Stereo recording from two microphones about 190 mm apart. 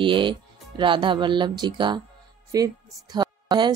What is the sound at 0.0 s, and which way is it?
A woman's voice, 25° right (ahead or behind).